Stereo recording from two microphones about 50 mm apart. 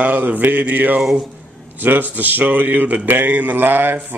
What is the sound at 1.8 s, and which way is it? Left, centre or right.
Speech, right.